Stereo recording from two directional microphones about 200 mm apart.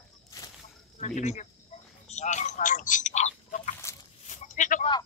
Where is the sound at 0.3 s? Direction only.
15° left (ahead or behind).